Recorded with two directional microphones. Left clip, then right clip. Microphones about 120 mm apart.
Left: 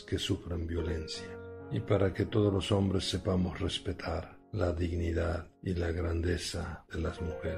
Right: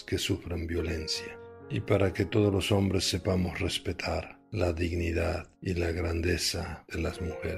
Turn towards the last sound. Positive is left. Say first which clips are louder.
# right 3 dB
turn(degrees=-50)  # may be behind; listen again after turning